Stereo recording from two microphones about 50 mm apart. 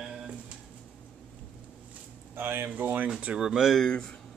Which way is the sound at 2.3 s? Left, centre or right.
Right.